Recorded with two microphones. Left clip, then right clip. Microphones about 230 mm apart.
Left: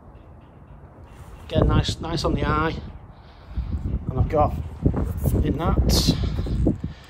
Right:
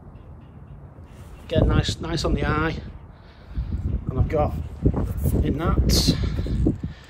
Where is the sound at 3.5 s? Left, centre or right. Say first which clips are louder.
Even; centre.